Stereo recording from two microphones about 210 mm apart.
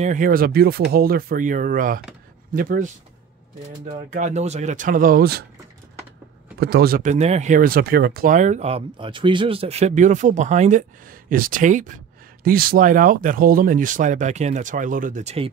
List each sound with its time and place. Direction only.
0.0 s speech: 40° right (ahead or behind)
4.2 s speech: 30° right (ahead or behind)
6.6 s speech: 50° right (ahead or behind); by 15.5 s 30° right (ahead or behind)